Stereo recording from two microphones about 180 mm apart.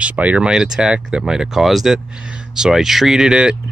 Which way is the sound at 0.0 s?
5° right (ahead or behind).